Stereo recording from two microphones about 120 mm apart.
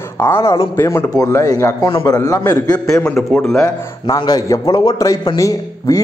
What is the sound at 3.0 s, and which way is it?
Speech, 5° left (ahead or behind).